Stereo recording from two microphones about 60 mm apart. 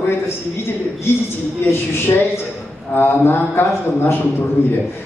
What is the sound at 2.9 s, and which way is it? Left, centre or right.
Speech, left.